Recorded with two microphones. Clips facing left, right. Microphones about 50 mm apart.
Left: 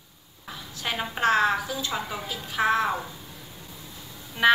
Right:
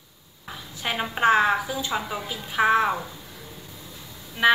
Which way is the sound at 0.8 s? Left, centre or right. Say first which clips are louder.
Right 3 dB; centre.